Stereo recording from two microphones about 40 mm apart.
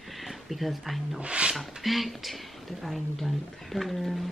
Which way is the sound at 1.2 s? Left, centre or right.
Right.